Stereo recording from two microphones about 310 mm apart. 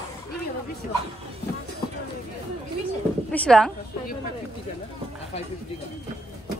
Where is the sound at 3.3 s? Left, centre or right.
Centre.